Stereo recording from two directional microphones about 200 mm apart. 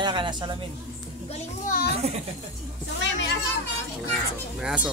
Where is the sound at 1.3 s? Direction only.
45° left (ahead or behind).